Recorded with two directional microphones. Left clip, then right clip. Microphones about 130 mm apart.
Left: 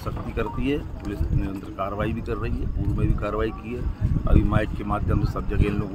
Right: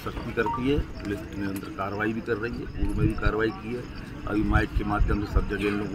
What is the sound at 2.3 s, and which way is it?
Speech, 65° left (ahead or behind).